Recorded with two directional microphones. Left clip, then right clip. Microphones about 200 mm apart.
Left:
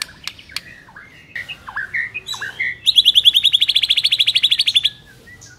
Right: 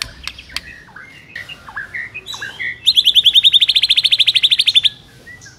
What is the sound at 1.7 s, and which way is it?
Bird, 50° left (ahead or behind).